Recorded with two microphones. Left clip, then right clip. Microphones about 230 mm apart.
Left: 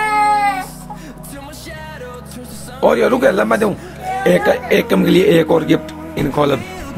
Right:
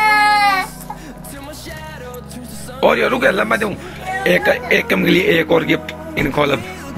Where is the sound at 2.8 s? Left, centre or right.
Centre.